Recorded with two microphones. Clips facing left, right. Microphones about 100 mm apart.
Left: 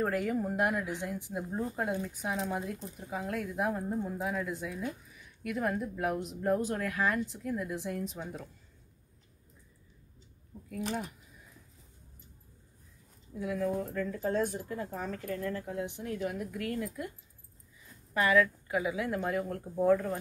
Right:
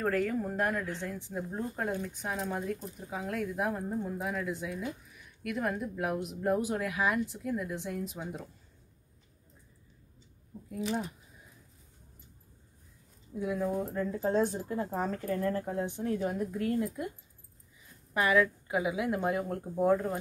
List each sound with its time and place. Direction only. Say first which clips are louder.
0.0 s speech: right 1 dB; 10° left (ahead or behind); by 8.3 s 5° right (ahead or behind)
13.4 s speech: right 1 dB; 20° right (ahead or behind)
18.1 s speech: even; 15° right (ahead or behind)